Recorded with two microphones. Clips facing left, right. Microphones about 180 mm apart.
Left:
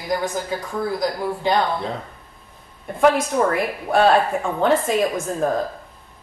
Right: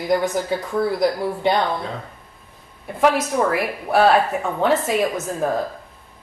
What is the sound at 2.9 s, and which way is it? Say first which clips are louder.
A woman's voice: left 1 dB; 5° right (ahead or behind).